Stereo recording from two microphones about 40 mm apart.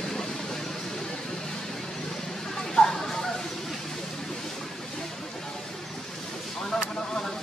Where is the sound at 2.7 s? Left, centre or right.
Centre.